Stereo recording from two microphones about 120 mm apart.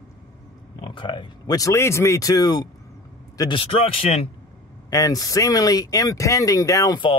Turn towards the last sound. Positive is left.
turn(degrees=25)  # may be behind; listen again after turning